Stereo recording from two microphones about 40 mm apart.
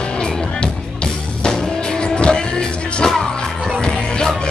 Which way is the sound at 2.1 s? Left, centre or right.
Left.